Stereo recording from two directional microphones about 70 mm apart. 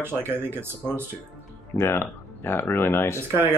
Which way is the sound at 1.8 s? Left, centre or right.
Left.